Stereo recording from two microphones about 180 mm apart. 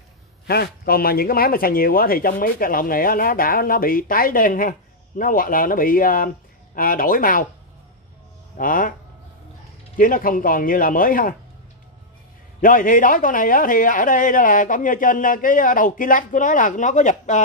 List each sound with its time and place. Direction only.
0.5 s speech: 60° left (ahead or behind)
8.5 s speech: 50° left (ahead or behind)
9.9 s speech: 50° left (ahead or behind)
12.5 s speech: 50° left (ahead or behind)